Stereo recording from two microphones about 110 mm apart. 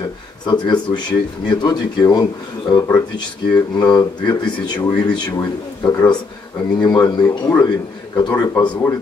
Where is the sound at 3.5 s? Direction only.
40° left (ahead or behind).